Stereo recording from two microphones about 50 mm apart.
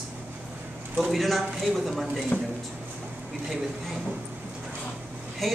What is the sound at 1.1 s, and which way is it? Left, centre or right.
Speech, centre.